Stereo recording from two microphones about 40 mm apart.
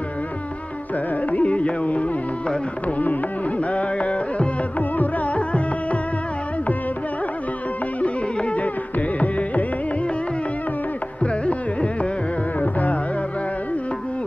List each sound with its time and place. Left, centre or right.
1.3 s carnatic music: left
3.0 s music: left
4.7 s music: left
8.0 s music: left
11.4 s carnatic music: left
12.5 s music: left